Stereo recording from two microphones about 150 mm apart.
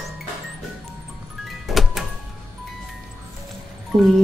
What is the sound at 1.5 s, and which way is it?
Music, centre (ahead or behind).